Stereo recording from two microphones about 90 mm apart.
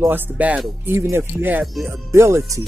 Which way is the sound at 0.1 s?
20° right (ahead or behind).